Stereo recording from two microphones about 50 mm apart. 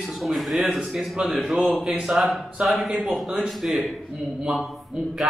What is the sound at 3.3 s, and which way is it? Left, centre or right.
Speech, centre.